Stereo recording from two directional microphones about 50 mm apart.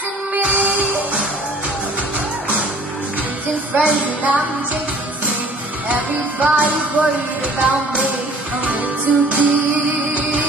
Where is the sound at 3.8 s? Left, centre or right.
Right.